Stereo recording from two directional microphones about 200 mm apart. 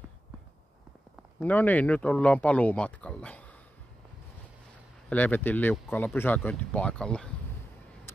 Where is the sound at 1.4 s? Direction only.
10° left (ahead or behind).